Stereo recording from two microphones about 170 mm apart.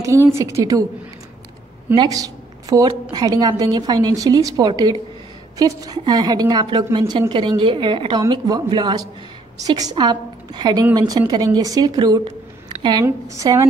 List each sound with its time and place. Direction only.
0.0 s a woman's voice: 15° right (ahead or behind)
2.0 s a woman's voice: 20° right (ahead or behind)
12.6 s a sound: 25° right (ahead or behind)
13.0 s a woman's voice: 20° right (ahead or behind)